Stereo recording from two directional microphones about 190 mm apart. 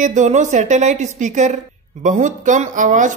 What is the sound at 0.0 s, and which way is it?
Speech, 40° right (ahead or behind).